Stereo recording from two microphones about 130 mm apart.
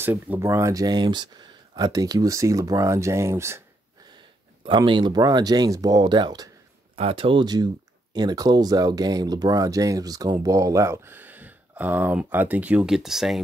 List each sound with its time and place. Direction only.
0.0 s speech: 15° right (ahead or behind)
4.6 s speech: 35° right (ahead or behind)
7.0 s speech: 45° right (ahead or behind); by 13.4 s 5° right (ahead or behind)